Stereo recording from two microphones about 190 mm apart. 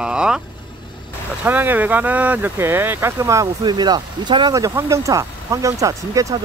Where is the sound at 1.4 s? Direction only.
10° right (ahead or behind).